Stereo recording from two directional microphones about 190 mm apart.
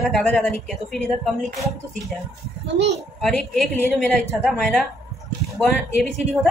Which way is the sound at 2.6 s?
65° right (ahead or behind).